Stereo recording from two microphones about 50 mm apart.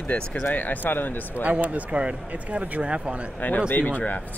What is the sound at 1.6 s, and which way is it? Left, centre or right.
Speech, right.